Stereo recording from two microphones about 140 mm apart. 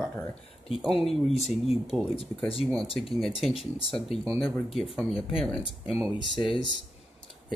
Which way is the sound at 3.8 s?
40° left (ahead or behind).